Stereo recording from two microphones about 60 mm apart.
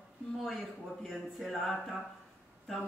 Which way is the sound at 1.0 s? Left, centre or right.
Centre.